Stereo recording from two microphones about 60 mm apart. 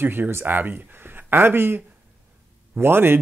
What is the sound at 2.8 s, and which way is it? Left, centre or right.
Speech, right.